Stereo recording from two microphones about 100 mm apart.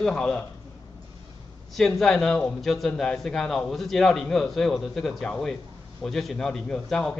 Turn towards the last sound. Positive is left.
turn(degrees=5)  # may be behind; listen again after turning